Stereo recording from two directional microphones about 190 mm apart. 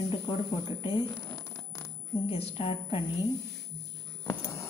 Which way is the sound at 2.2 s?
30° left (ahead or behind).